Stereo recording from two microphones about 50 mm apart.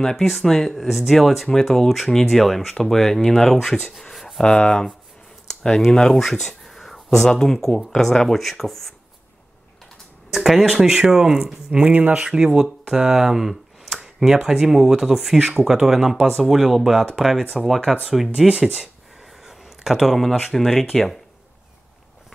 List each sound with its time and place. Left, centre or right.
0.0 s speech: centre
4.0 s a sound: centre
4.4 s speech: centre
10.3 s speech: centre
11.7 s speech: right
12.3 s speech: centre
19.4 s a sound: centre
20.5 s speech: centre